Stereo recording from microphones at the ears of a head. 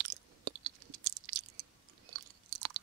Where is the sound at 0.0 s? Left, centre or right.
Right.